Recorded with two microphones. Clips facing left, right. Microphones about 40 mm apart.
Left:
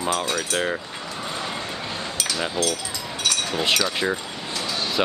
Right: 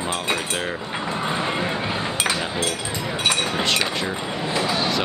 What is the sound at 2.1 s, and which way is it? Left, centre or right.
Chink, right.